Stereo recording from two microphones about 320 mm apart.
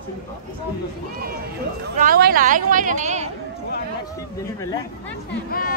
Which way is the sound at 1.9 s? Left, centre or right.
Right.